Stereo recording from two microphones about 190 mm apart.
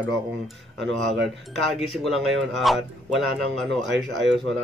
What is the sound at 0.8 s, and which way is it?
Speech, centre (ahead or behind).